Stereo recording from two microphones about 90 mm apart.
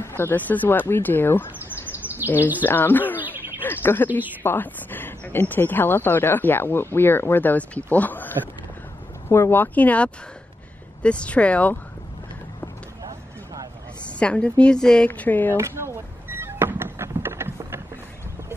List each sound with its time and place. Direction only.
0.2 s speech: 20° left (ahead or behind)
2.0 s bird: 20° left (ahead or behind)
2.6 s speech: 20° left (ahead or behind)
9.3 s a woman's voice: 25° left (ahead or behind)
14.0 s a woman's voice: 15° left (ahead or behind)
15.0 s speech: 20° left (ahead or behind)
15.5 s power windows: 30° right (ahead or behind)
17.2 s vehicle: 25° right (ahead or behind)